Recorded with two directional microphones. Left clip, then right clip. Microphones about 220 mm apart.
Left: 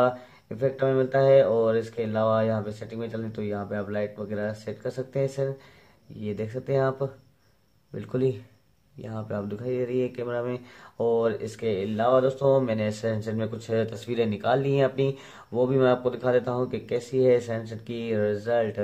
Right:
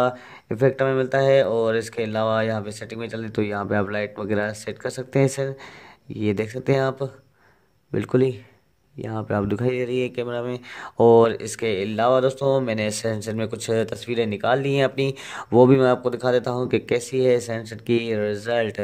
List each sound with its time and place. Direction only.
0.0 s speech: 50° right (ahead or behind)